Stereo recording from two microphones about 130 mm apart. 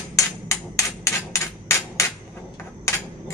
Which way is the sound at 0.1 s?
25° left (ahead or behind).